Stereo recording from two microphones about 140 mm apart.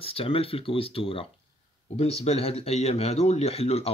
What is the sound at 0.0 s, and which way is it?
A man's voice, 40° left (ahead or behind).